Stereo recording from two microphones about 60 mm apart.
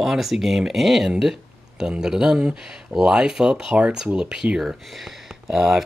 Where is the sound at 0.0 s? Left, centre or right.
Centre.